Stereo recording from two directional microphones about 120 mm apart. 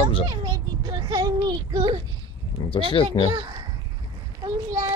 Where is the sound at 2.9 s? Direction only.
45° left (ahead or behind).